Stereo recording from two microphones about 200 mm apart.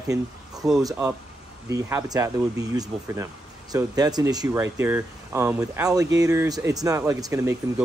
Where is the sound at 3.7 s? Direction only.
20° right (ahead or behind).